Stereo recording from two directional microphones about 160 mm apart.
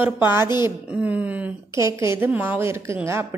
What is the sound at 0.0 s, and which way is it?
A woman's voice, 15° right (ahead or behind).